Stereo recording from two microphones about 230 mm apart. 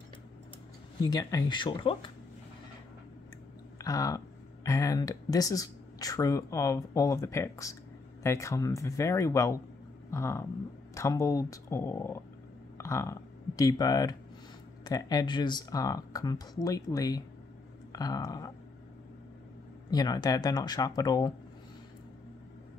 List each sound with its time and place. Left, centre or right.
1.0 s speech: centre
3.7 s a sound: centre
4.6 s speech: centre
19.9 s speech: centre